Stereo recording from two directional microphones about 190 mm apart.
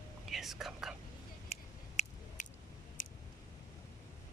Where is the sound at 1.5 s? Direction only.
35° left (ahead or behind).